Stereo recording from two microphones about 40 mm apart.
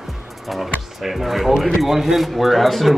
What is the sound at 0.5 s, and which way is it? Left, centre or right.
A man's voice, centre.